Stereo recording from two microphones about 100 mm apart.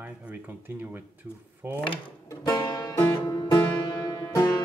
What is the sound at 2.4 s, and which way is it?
Music, 40° left (ahead or behind).